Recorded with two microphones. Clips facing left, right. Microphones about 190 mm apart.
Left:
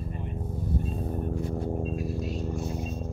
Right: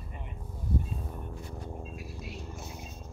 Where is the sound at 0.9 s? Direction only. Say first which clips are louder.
Left 10 dB; 45° left (ahead or behind).